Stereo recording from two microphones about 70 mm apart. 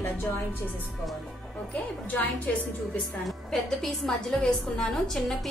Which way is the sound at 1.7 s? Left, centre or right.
Left.